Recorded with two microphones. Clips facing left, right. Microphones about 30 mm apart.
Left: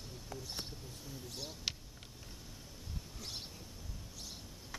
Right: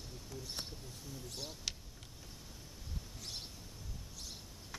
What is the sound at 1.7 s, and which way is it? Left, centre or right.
Vehicle, centre.